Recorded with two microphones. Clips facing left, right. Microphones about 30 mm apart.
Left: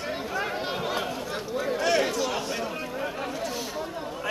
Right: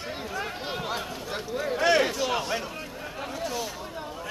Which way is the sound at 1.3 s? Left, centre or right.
Centre.